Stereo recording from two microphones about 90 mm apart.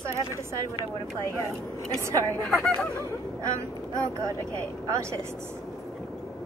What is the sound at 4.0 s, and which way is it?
A woman's voice, 35° right (ahead or behind).